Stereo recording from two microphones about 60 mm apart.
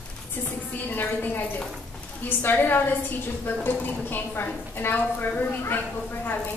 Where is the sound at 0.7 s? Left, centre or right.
Left.